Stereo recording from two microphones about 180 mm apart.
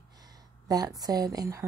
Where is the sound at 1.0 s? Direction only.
20° right (ahead or behind).